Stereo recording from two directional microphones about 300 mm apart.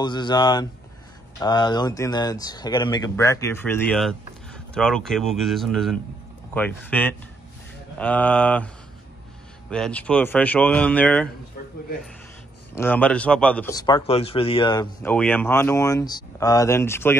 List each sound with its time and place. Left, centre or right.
0.0 s speech: centre
9.7 s speech: centre
12.7 s speech: centre